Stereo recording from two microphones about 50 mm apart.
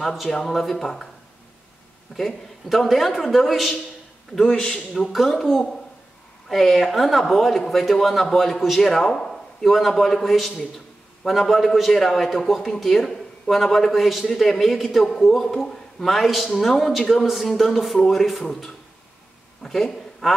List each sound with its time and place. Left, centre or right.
0.0 s speech: centre
2.1 s speech: centre
4.5 s a man's voice: left
5.1 s a woman's voice: centre